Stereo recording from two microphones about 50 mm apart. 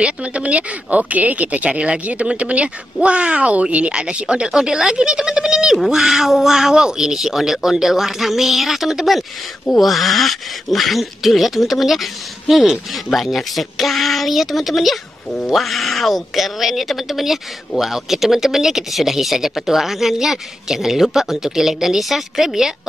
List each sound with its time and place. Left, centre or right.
0.0 s speech: right
4.5 s speech: centre